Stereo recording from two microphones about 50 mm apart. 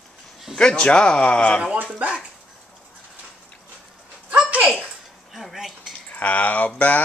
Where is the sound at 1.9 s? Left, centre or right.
Right.